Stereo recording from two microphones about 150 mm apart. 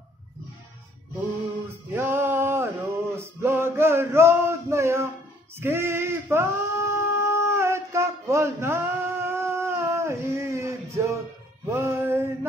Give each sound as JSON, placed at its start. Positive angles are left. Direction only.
{"t": 1.9, "sound": "male singing", "side_deg": -15}
{"t": 11.7, "sound": "music", "side_deg": -15}